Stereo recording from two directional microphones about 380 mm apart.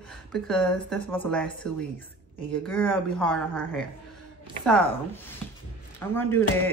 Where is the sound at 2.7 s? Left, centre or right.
Centre.